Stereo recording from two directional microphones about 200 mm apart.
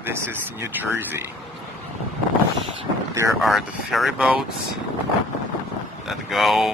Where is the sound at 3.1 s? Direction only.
15° right (ahead or behind).